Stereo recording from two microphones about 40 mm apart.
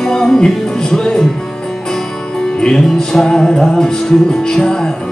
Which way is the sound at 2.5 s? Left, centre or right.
Centre.